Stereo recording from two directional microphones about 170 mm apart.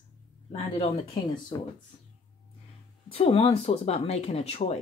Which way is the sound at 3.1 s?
35° left (ahead or behind).